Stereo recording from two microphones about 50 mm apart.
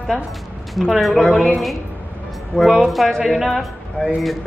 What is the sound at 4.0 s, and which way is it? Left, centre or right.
Music, left.